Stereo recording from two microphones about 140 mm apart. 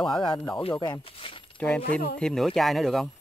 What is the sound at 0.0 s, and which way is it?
Speech, 5° left (ahead or behind).